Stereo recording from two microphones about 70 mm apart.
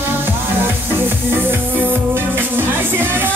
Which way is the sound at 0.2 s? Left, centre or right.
Right.